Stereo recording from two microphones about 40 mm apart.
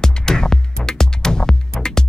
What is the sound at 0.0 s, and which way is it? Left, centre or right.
Music, centre.